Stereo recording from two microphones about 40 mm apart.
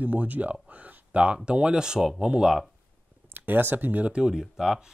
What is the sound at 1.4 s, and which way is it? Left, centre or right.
Speech, right.